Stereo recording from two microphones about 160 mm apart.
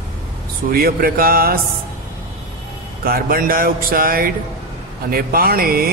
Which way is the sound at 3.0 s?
70° right (ahead or behind).